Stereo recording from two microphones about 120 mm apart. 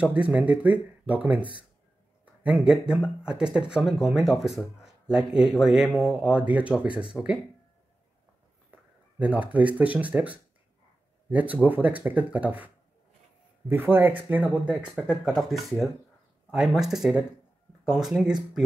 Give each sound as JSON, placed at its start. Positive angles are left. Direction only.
{"t": 0.0, "sound": "speech", "side_deg": -10}
{"t": 2.4, "sound": "speech", "side_deg": -5}
{"t": 8.7, "sound": "a sound", "side_deg": -15}
{"t": 9.2, "sound": "speech", "side_deg": -15}
{"t": 15.0, "sound": "speech", "side_deg": 0}